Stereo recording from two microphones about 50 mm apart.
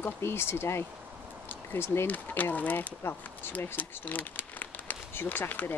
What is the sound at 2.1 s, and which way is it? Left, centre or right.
Speech, left.